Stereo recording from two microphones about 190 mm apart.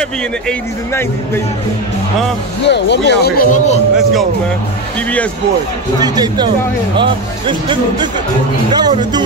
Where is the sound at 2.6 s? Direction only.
65° left (ahead or behind); by 3.8 s 40° left (ahead or behind).